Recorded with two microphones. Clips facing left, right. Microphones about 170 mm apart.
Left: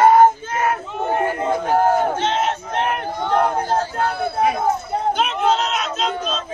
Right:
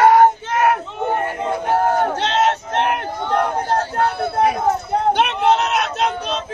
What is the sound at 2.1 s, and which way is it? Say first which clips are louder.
Battle cry: right 2 dB; 75° right (ahead or behind).